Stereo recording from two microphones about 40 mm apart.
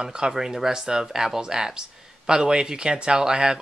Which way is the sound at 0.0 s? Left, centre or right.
Centre.